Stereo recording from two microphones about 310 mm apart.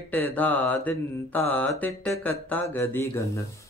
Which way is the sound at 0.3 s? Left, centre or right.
Centre.